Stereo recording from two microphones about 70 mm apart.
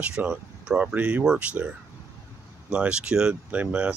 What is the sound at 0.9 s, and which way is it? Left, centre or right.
Speech, right.